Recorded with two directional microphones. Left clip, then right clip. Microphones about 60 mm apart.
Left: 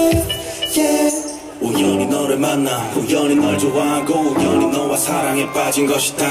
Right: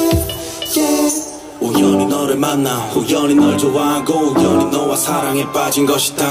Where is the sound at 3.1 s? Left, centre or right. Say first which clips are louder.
Right 3 dB; centre.